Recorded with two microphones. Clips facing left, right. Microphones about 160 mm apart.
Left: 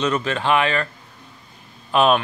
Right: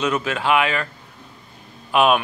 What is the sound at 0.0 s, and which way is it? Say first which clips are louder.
Speech: even; 5° right (ahead or behind).